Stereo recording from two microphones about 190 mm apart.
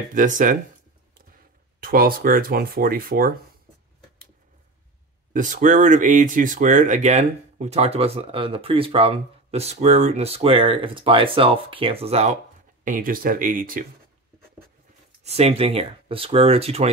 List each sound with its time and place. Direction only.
0.1 s speech: 40° right (ahead or behind)
1.8 s speech: 50° right (ahead or behind)
5.3 s speech: 45° right (ahead or behind)
12.8 s speech: 45° right (ahead or behind)
15.2 s speech: 35° right (ahead or behind)